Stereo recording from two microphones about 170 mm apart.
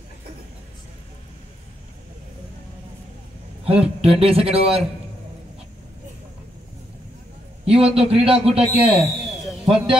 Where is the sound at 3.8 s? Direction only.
35° right (ahead or behind).